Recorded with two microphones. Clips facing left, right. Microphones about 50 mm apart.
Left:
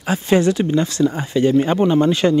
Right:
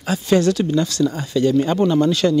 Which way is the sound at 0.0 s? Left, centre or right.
Left.